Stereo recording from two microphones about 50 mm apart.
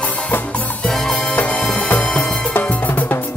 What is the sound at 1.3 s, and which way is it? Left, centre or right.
Music, left.